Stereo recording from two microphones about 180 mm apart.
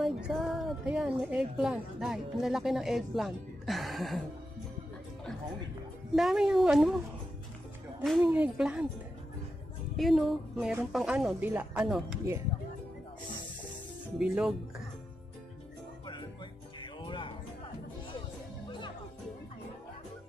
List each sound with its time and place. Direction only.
0.0 s a woman's voice: centre (ahead or behind)
6.1 s a woman's voice: 5° right (ahead or behind)
8.0 s a woman's voice: centre (ahead or behind)
9.9 s a woman's voice: centre (ahead or behind)
14.1 s a woman's voice: 5° right (ahead or behind)
16.8 s music: 25° left (ahead or behind)